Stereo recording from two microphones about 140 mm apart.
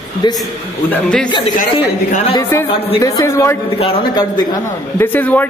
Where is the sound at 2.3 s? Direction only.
20° left (ahead or behind).